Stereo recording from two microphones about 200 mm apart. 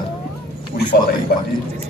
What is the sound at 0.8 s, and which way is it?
Speech, 55° left (ahead or behind).